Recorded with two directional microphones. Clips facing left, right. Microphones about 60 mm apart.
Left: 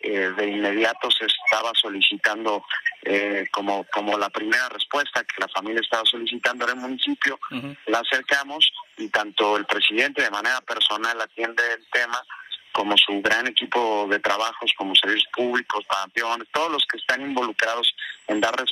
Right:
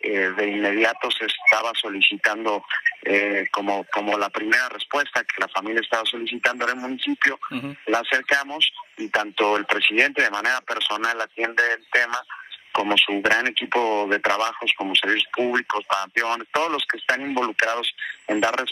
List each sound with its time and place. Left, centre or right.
0.0 s speech: right